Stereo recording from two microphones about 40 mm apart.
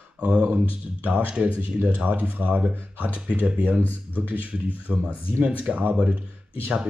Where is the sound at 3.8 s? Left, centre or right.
Left.